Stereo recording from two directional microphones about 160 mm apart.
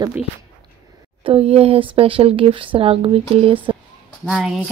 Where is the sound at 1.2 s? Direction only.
35° right (ahead or behind).